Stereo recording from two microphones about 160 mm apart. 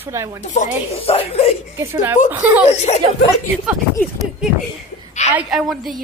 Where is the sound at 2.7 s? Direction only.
45° left (ahead or behind).